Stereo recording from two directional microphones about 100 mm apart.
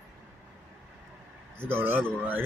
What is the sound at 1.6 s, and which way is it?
Speech, 20° right (ahead or behind).